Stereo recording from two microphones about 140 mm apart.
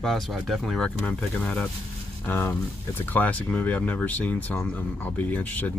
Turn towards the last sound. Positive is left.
turn(degrees=10)  # may be behind; listen again after turning